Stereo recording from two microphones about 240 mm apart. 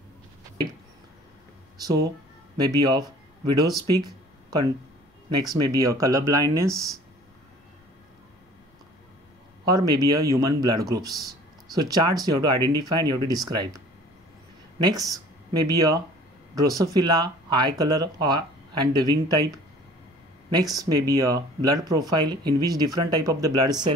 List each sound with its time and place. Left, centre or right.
2.5 s speech: centre
3.9 s a sound: centre
5.3 s speech: centre
9.7 s speech: centre
20.7 s speech: centre